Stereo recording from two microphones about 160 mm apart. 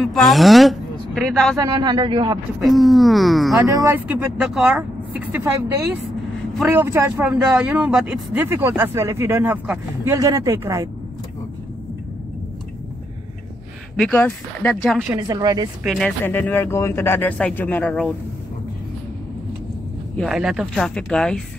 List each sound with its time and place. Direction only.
0.0 s speech: centre (ahead or behind)
1.6 s a man's voice: 25° right (ahead or behind)
2.6 s speech: centre (ahead or behind)
3.5 s a man's voice: 20° right (ahead or behind)
4.1 s speech: 5° right (ahead or behind)
13.9 s speech: 5° left (ahead or behind)
15.1 s a man's voice: 25° right (ahead or behind)
15.8 s speech: centre (ahead or behind)
16.3 s speech: 10° left (ahead or behind)
20.2 s speech: centre (ahead or behind)